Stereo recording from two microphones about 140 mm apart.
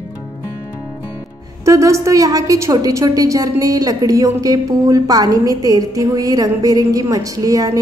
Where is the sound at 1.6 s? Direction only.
20° right (ahead or behind).